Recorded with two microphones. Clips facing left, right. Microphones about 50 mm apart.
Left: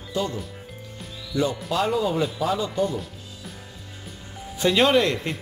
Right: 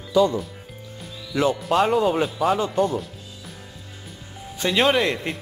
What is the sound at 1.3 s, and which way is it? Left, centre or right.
Speech, right.